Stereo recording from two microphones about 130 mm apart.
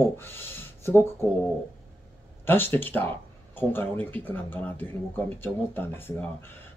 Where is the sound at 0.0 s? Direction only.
15° left (ahead or behind).